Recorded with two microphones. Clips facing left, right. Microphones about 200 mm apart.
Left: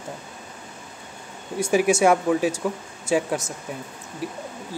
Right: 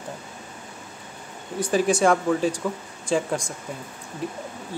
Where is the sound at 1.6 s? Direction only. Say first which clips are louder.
Left 2 dB; 10° left (ahead or behind).